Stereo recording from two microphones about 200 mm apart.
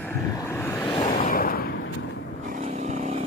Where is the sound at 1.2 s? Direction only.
45° left (ahead or behind).